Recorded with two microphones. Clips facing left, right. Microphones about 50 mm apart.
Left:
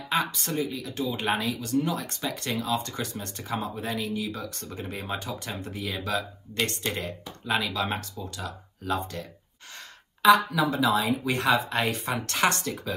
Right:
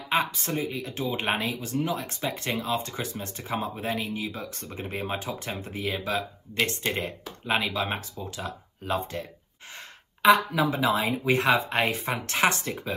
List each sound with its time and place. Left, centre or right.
0.1 s speech: right
1.8 s speech: centre